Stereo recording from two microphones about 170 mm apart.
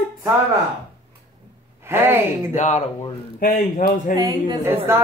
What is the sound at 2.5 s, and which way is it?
Speech, 45° left (ahead or behind).